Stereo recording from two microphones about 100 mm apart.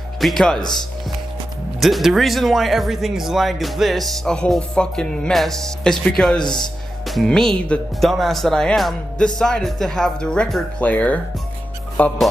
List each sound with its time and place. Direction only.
0.2 s speech: 5° left (ahead or behind)
0.6 s speech: 45° left (ahead or behind)
1.8 s speech: centre (ahead or behind)
6.4 s speech: 45° left (ahead or behind)
7.1 s speech: 5° left (ahead or behind)